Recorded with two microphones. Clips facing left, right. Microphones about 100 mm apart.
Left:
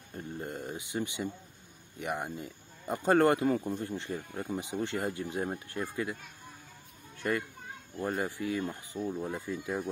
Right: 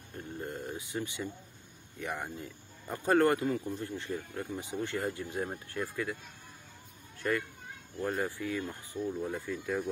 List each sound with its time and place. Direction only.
0.4 s speech: 20° left (ahead or behind)
3.4 s speech: 50° left (ahead or behind)
3.8 s speech: 20° left (ahead or behind)
7.2 s speech: 20° left (ahead or behind)